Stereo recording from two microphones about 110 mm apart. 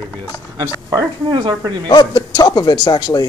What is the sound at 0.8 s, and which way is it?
Speech, 30° right (ahead or behind).